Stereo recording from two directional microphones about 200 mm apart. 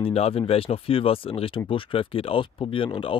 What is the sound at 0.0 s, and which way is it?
Speech, 30° left (ahead or behind).